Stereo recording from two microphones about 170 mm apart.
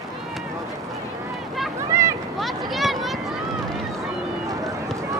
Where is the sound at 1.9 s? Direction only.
15° right (ahead or behind).